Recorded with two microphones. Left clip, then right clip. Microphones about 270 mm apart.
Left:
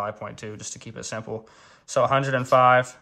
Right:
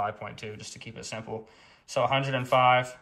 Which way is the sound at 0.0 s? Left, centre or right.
Left.